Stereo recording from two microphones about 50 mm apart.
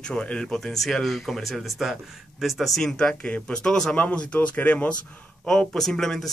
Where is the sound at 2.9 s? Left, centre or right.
Left.